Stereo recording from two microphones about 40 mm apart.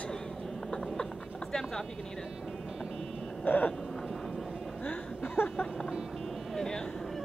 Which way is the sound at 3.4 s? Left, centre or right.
Left.